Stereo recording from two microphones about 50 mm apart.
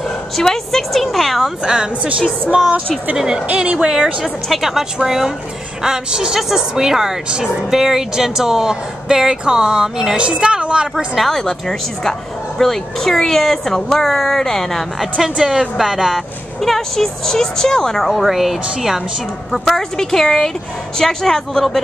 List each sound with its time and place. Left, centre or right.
0.4 s a woman's voice: centre
1.6 s a woman's voice: centre
3.4 s speech: right
3.8 s a woman's voice: centre
11.1 s a woman's voice: centre
15.1 s a woman's voice: centre
16.6 s a woman's voice: centre